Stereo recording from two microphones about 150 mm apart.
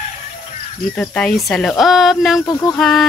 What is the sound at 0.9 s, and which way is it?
Speech, 10° left (ahead or behind).